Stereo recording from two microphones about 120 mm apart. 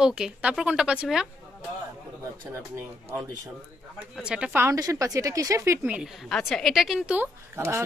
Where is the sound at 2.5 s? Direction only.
20° right (ahead or behind).